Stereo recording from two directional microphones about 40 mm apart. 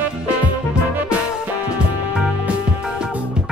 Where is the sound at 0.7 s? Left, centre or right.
Right.